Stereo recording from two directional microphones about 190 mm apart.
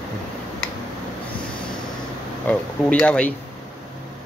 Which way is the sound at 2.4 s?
5° left (ahead or behind).